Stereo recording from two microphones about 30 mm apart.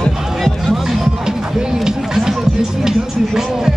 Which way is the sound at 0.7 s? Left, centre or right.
Centre.